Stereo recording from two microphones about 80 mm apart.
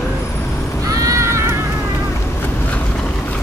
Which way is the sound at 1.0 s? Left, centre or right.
Right.